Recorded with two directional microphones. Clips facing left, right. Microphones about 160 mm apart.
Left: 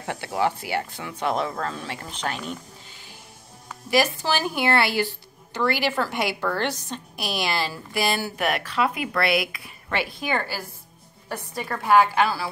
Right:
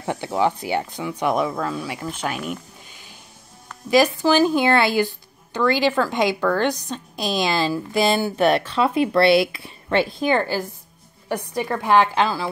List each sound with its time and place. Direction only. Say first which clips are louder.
0.0 s a woman's voice: right 4 dB; 20° right (ahead or behind)